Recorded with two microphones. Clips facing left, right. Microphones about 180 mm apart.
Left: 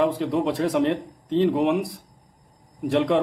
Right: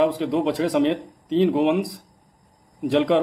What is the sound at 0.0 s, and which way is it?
A man's voice, centre (ahead or behind).